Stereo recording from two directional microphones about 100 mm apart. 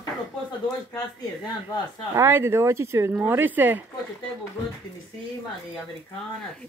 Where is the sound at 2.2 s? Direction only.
25° right (ahead or behind).